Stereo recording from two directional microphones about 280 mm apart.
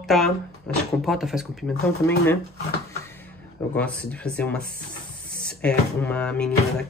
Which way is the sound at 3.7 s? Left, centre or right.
Centre.